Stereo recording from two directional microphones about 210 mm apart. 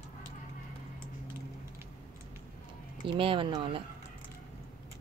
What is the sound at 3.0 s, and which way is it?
Speech, 25° right (ahead or behind).